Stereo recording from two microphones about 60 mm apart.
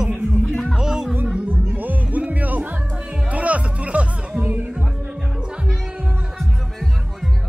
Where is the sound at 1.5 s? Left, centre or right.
Right.